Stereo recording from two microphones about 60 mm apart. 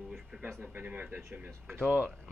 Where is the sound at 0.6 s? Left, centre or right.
Right.